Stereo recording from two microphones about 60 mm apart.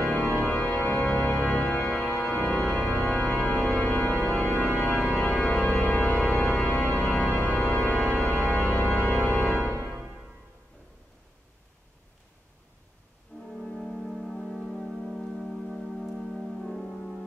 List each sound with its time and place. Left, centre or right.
0.0 s organ: left
13.3 s music: centre
13.7 s music: centre
15.1 s organ: centre